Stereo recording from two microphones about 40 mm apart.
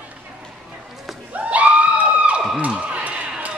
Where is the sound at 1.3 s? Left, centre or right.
Right.